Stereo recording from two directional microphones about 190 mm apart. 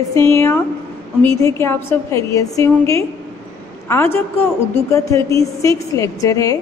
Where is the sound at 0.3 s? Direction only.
15° left (ahead or behind).